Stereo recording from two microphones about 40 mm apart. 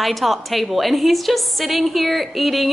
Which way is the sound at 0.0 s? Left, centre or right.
Centre.